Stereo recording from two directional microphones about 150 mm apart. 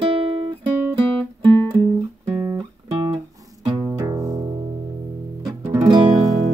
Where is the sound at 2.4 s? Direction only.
20° right (ahead or behind).